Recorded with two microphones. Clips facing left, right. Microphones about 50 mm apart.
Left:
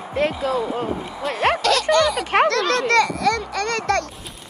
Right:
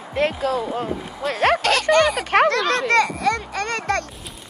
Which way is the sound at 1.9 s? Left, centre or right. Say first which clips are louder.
Right 2 dB; right.